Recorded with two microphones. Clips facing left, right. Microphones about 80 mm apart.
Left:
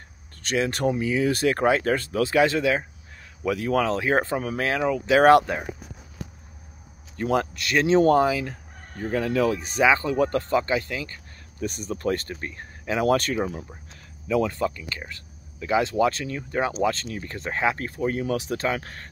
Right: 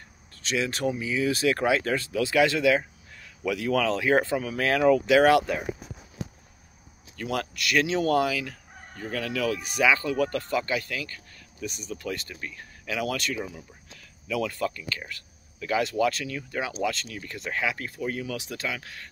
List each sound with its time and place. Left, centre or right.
0.4 s speech: left
7.2 s speech: left
11.6 s speech: left
14.2 s speech: left